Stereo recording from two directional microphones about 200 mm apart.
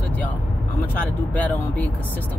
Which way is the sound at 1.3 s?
10° left (ahead or behind).